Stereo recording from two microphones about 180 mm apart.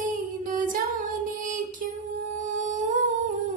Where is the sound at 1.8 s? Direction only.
50° right (ahead or behind).